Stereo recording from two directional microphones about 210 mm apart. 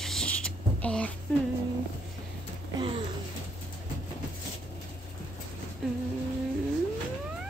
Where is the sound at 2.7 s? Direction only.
25° right (ahead or behind).